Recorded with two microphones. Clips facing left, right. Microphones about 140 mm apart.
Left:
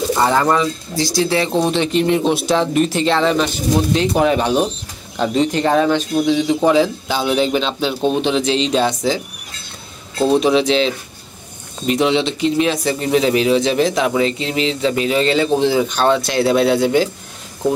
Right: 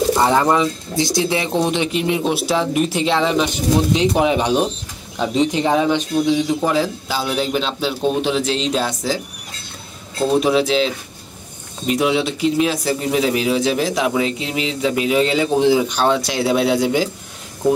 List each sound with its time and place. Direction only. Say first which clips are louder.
0.2 s speech: left 2 dB; 20° right (ahead or behind)
6.6 s a man's voice: left 5 dB; centre (ahead or behind)
10.2 s a man's voice: left 2 dB; 5° right (ahead or behind)